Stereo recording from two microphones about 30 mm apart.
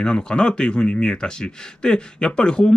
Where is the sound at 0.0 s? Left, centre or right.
Left.